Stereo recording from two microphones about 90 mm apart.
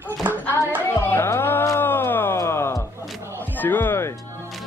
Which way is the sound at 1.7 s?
25° left (ahead or behind).